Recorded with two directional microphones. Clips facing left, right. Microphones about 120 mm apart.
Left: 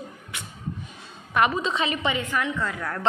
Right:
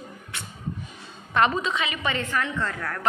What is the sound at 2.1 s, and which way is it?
A woman's voice, 15° left (ahead or behind).